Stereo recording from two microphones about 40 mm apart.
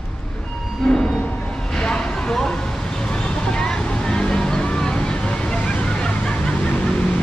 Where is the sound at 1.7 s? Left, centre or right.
Left.